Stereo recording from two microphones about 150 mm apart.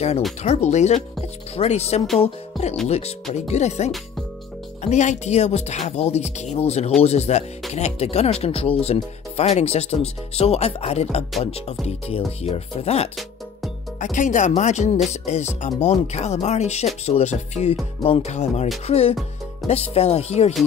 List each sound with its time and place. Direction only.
0.4 s speech: 45° left (ahead or behind)
2.1 s music: 45° left (ahead or behind)
3.3 s speech: 50° left (ahead or behind)
13.9 s speech: 55° left (ahead or behind)
18.9 s music: 40° left (ahead or behind)
19.7 s speech: 45° left (ahead or behind)